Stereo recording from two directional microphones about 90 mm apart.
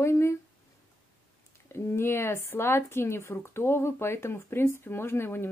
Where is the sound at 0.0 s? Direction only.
30° left (ahead or behind).